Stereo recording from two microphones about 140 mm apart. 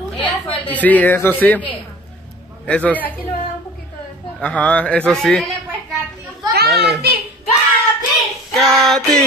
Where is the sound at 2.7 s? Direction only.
10° left (ahead or behind).